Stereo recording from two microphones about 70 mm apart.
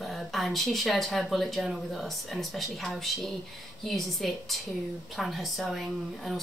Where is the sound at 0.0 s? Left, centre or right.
Centre.